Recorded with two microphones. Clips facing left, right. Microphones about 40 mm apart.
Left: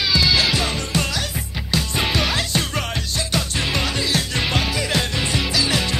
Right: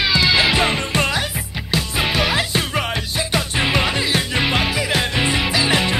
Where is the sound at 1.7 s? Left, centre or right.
Centre.